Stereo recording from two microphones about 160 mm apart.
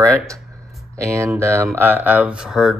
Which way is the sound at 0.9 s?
15° right (ahead or behind).